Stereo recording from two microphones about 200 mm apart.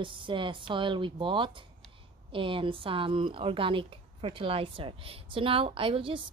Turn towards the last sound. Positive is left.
turn(degrees=-25)  # may be behind; listen again after turning